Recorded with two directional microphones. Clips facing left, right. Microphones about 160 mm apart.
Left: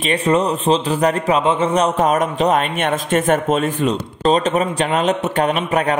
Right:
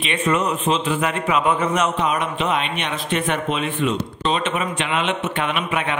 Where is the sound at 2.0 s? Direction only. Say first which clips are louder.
Left 6 dB; 45° left (ahead or behind).